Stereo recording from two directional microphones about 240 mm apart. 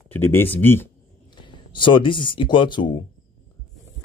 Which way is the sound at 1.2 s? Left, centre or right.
Centre.